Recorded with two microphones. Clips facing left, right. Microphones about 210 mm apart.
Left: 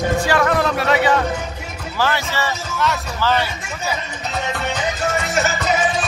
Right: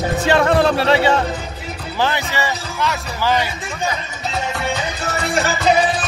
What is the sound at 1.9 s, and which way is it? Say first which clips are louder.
Speech: right 1 dB; 15° right (ahead or behind).